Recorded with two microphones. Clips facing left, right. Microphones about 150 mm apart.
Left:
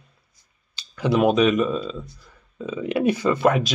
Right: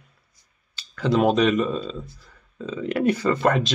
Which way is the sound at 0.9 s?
15° left (ahead or behind).